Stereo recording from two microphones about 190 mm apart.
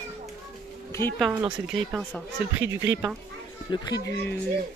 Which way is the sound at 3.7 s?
20° left (ahead or behind).